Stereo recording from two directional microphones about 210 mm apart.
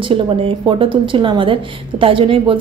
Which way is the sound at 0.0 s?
25° right (ahead or behind).